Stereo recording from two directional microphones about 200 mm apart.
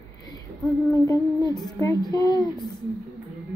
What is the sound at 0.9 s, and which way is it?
A woman's voice, 20° left (ahead or behind).